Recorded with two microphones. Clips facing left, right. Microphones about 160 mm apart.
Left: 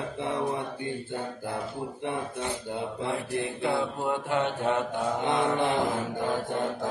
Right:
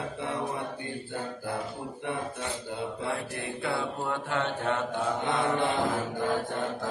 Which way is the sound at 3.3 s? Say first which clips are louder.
Left 4 dB; 20° left (ahead or behind).